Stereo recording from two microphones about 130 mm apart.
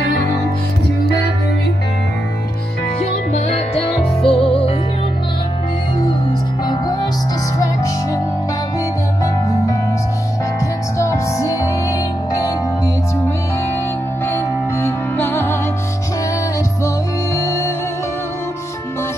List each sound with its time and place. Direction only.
3.4 s music: 50° left (ahead or behind)
6.7 s music: 35° left (ahead or behind)
11.0 s music: 25° left (ahead or behind)
14.2 s music: 20° left (ahead or behind)